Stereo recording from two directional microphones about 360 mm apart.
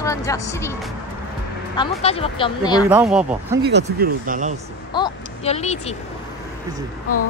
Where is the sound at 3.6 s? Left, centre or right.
Right.